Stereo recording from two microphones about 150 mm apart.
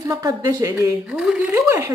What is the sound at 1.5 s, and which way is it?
Speech, 20° right (ahead or behind).